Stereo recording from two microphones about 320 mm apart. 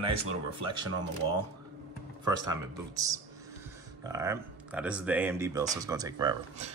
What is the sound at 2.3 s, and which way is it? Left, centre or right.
Speech, centre.